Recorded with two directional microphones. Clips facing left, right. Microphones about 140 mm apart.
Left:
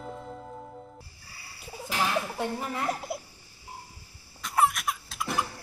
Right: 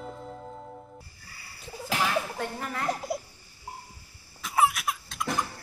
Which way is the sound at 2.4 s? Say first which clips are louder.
Left 2 dB; 15° left (ahead or behind).